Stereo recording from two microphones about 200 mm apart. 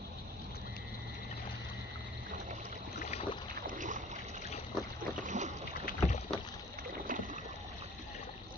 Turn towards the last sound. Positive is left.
turn(degrees=-40)  # may be behind; listen again after turning